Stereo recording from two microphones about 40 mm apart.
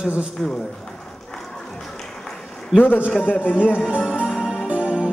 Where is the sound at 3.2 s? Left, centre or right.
Left.